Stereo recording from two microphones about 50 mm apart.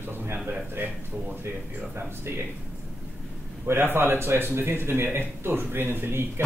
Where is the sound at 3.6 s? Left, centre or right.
Right.